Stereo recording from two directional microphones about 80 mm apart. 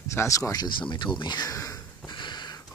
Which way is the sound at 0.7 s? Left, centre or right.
Left.